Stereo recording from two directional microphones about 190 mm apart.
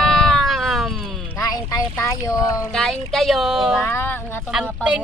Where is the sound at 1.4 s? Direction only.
20° left (ahead or behind).